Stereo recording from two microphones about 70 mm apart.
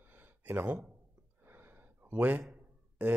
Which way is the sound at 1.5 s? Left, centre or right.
Right.